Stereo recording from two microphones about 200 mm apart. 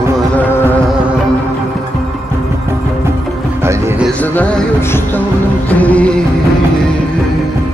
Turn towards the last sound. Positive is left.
turn(degrees=5)  # may be behind; listen again after turning